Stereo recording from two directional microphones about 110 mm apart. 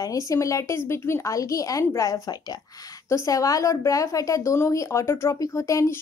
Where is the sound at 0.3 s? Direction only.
30° left (ahead or behind).